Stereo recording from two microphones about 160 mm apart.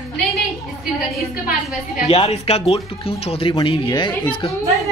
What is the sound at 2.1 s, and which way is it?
Speech, 40° left (ahead or behind).